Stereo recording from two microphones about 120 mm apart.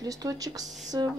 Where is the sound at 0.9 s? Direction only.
30° right (ahead or behind).